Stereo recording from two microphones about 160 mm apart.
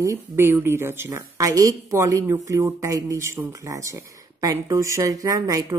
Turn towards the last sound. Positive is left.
turn(degrees=-20)  # may be behind; listen again after turning